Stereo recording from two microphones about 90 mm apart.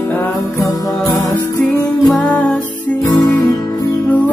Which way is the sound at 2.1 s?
15° left (ahead or behind).